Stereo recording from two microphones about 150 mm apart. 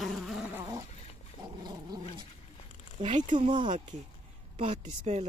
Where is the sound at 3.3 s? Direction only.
35° right (ahead or behind).